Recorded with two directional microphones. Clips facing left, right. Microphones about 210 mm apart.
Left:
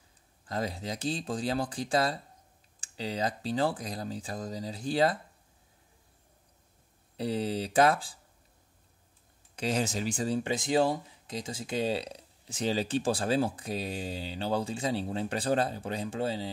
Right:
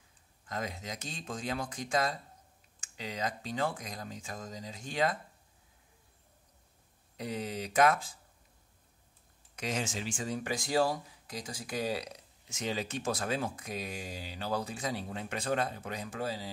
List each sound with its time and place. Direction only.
0.5 s speech: 35° left (ahead or behind)
7.2 s speech: 30° left (ahead or behind)
9.6 s speech: 35° left (ahead or behind)